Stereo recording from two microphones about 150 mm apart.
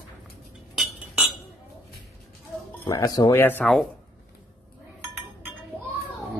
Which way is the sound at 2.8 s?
25° left (ahead or behind).